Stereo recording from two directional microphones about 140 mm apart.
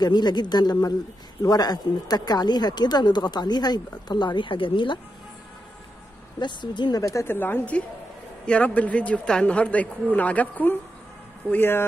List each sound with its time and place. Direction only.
0.0 s a woman's voice: 30° left (ahead or behind)
6.4 s a woman's voice: 35° left (ahead or behind); by 11.8 s 15° left (ahead or behind)